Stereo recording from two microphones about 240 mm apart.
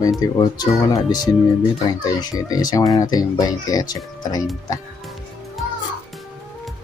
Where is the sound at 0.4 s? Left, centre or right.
Centre.